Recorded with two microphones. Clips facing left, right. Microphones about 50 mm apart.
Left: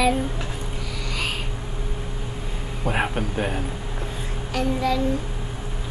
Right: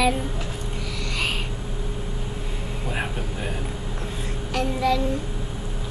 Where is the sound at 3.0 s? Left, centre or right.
Left.